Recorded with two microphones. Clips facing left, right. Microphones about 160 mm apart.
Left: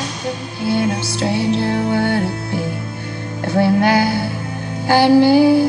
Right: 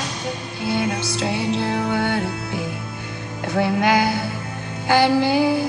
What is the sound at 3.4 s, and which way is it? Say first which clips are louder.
Music: left 5 dB; 35° left (ahead or behind).